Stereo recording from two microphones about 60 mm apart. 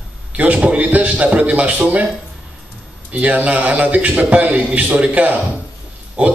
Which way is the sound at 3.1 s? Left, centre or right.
Right.